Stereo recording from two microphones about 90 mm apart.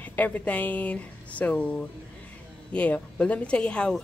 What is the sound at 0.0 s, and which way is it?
Speech, 20° left (ahead or behind).